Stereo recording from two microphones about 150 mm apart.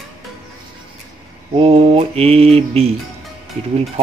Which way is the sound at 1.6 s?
40° right (ahead or behind).